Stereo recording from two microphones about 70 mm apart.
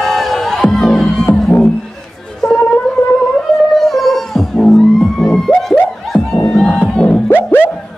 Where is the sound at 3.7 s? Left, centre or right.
Centre.